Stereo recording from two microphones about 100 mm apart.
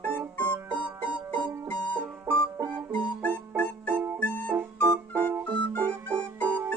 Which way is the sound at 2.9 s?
15° left (ahead or behind).